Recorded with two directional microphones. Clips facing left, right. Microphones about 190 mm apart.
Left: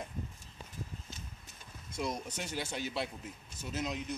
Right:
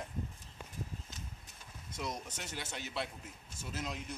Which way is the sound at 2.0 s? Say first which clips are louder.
Left 4 dB; 5° left (ahead or behind).